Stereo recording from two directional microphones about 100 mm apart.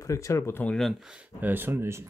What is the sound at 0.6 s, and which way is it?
Speech, 5° left (ahead or behind).